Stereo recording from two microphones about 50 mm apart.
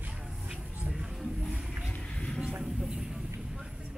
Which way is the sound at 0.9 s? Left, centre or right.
Centre.